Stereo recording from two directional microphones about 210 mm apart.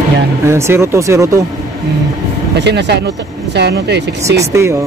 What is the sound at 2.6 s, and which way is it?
Speech, 50° right (ahead or behind).